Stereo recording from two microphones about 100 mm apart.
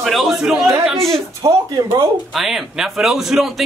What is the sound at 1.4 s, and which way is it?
Speech, 40° right (ahead or behind).